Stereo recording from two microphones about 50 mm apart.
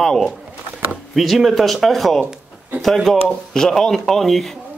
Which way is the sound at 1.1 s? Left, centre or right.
Centre.